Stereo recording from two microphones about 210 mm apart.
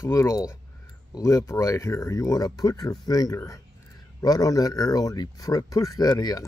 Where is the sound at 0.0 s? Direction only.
15° left (ahead or behind).